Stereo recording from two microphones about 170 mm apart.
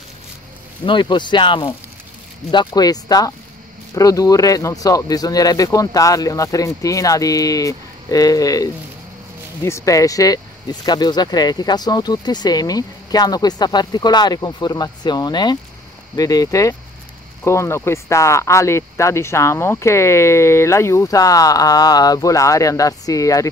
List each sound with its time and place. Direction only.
0.8 s speech: 25° left (ahead or behind)